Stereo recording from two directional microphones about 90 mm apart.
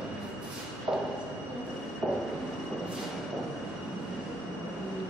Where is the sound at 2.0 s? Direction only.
15° right (ahead or behind).